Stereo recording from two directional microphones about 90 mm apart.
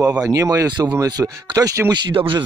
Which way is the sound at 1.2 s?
20° right (ahead or behind).